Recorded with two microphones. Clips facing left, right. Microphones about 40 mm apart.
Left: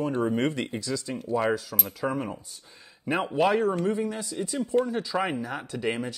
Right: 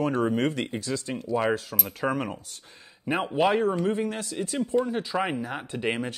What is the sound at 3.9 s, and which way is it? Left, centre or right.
Speech, right.